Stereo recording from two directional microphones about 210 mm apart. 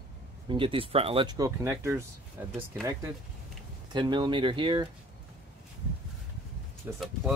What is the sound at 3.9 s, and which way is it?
Speech, 20° right (ahead or behind).